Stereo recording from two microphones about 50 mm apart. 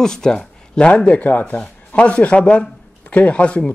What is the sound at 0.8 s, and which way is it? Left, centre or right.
Speech, left.